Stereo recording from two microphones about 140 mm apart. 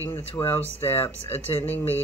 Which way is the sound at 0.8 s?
45° left (ahead or behind).